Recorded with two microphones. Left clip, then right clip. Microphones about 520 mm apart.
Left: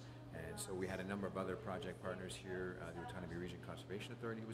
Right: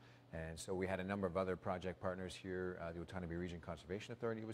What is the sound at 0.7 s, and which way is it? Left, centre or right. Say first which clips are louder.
Speech: right 4 dB; right.